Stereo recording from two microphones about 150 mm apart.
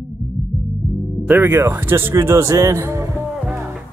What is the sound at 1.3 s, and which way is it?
Speech, 15° right (ahead or behind).